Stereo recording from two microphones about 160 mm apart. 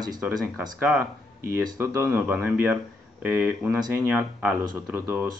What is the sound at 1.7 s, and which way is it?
Speech, 15° right (ahead or behind).